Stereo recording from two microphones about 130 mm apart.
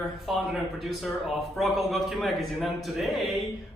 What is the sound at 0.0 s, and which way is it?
Speech, centre (ahead or behind).